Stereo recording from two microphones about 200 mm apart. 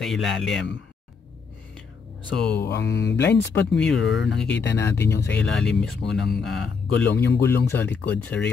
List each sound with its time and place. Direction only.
0.0 s speech: centre (ahead or behind)
2.3 s speech: 5° left (ahead or behind)
2.6 s mantra: 55° left (ahead or behind)
3.5 s speech: 5° left (ahead or behind)
4.5 s mantra: 60° left (ahead or behind)
5.5 s speech: 5° left (ahead or behind)
7.2 s mantra: 55° left (ahead or behind)
7.7 s speech: 10° left (ahead or behind)